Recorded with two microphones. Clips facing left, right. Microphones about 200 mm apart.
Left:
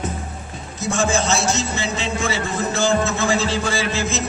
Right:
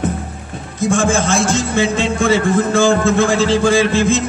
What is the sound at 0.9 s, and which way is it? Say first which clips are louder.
A man's voice: right 4 dB; 50° right (ahead or behind).